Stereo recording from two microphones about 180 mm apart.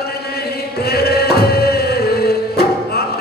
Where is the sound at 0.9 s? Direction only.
60° left (ahead or behind).